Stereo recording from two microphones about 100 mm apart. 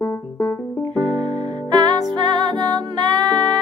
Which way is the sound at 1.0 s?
40° right (ahead or behind).